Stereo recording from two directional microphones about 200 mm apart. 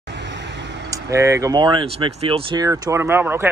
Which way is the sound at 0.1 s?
60° right (ahead or behind).